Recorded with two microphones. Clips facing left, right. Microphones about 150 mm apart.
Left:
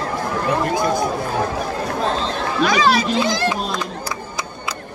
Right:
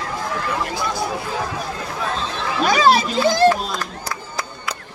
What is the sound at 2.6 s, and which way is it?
Speech, 35° right (ahead or behind).